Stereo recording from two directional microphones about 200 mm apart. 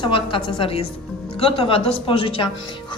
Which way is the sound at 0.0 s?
25° left (ahead or behind).